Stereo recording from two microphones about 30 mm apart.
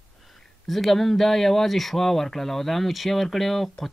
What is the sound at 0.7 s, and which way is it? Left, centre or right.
Speech, centre.